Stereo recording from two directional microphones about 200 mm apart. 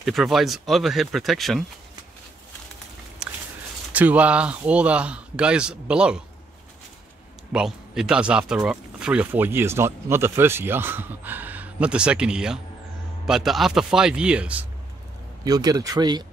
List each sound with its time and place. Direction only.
0.0 s a man's voice: centre (ahead or behind)
3.2 s a sound: 5° right (ahead or behind)
3.9 s a man's voice: 5° right (ahead or behind)
7.5 s a man's voice: 5° right (ahead or behind)
15.4 s speech: 20° right (ahead or behind)